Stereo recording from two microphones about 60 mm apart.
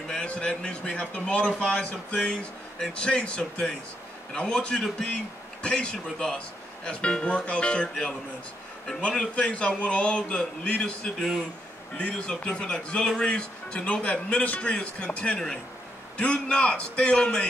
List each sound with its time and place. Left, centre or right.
0.1 s speech: centre